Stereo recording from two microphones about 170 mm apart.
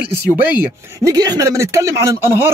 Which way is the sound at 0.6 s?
15° right (ahead or behind).